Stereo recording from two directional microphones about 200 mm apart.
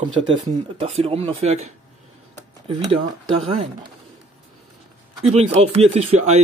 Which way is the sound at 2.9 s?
25° right (ahead or behind).